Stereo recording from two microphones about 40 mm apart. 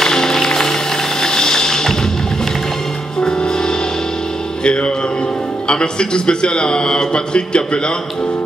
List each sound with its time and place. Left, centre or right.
0.0 s music: centre
3.3 s music: centre
4.6 s a man's voice: left